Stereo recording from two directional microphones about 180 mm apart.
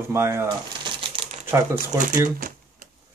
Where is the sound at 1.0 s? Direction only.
30° right (ahead or behind).